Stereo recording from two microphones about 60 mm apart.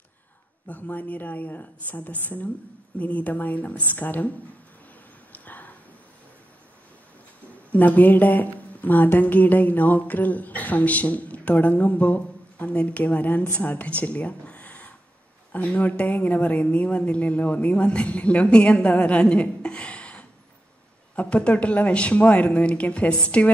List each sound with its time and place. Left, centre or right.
0.7 s a woman's voice: left
5.3 s a sound: left
7.7 s a woman's voice: left